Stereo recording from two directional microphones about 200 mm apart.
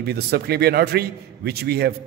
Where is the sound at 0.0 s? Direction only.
50° right (ahead or behind).